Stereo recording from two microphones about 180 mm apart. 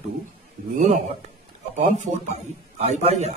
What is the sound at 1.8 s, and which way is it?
Speech, 40° right (ahead or behind).